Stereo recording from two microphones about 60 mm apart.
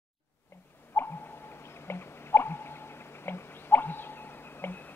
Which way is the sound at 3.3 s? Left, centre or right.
Left.